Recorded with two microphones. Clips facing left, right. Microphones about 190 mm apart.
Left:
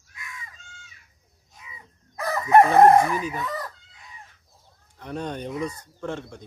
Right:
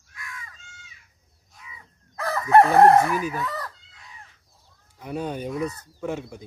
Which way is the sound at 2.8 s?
10° left (ahead or behind).